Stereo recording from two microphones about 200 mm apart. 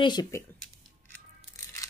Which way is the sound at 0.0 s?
20° left (ahead or behind).